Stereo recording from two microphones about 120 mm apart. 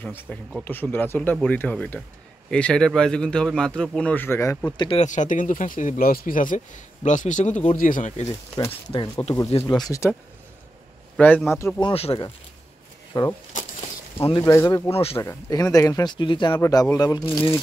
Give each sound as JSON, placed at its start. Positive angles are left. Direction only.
{"t": 0.0, "sound": "a man's voice", "side_deg": 10}
{"t": 4.7, "sound": "speech", "side_deg": 40}
{"t": 5.0, "sound": "speech", "side_deg": 90}
{"t": 9.2, "sound": "speech", "side_deg": 45}
{"t": 9.7, "sound": "speech", "side_deg": 35}
{"t": 11.1, "sound": "a man's voice", "side_deg": 15}
{"t": 11.8, "sound": "speech", "side_deg": 50}
{"t": 13.1, "sound": "speech", "side_deg": 35}
{"t": 13.5, "sound": "a sound", "side_deg": 90}
{"t": 14.4, "sound": "speech", "side_deg": 20}
{"t": 14.9, "sound": "speech", "side_deg": 55}
{"t": 15.1, "sound": "speech", "side_deg": 25}
{"t": 16.5, "sound": "speech", "side_deg": 25}